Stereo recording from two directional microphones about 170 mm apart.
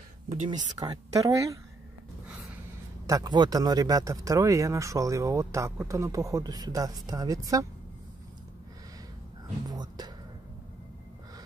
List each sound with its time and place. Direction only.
0.3 s speech: 45° right (ahead or behind)
0.7 s speech: 20° right (ahead or behind)
3.1 s speech: 20° right (ahead or behind)
9.7 s whispering: 25° right (ahead or behind)